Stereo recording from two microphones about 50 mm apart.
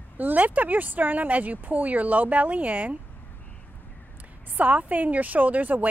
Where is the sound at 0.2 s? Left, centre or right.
Right.